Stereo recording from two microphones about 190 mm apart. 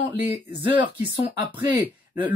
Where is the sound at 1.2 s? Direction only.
25° right (ahead or behind).